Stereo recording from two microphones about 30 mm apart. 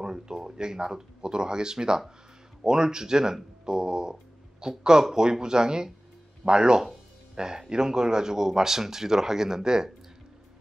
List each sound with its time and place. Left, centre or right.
0.0 s speech: centre